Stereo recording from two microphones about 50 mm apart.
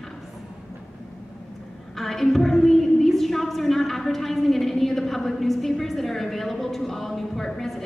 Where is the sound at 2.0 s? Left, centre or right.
Centre.